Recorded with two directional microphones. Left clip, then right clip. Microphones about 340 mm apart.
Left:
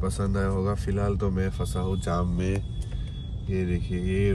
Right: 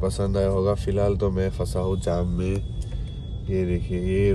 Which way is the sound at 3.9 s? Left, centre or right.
Left.